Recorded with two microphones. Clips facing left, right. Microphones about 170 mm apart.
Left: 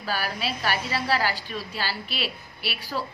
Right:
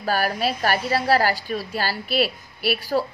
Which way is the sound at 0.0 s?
45° right (ahead or behind).